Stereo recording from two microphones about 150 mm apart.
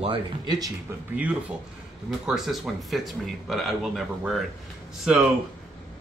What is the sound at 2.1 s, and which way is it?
Speech, centre (ahead or behind).